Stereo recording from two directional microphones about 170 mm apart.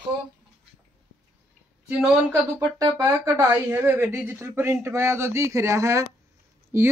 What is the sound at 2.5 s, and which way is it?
Speech, 20° right (ahead or behind).